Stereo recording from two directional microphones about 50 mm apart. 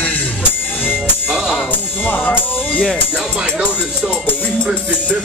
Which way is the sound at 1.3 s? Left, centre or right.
Centre.